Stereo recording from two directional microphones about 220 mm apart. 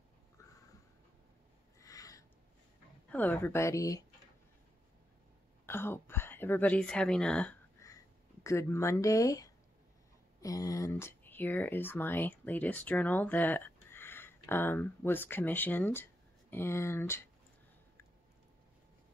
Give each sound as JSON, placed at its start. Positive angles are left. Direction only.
{"t": 1.8, "sound": "a sound", "side_deg": 15}
{"t": 3.1, "sound": "speech", "side_deg": 10}
{"t": 5.7, "sound": "speech", "side_deg": 10}